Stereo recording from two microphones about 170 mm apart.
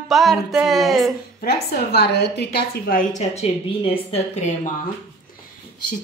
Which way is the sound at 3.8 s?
35° left (ahead or behind).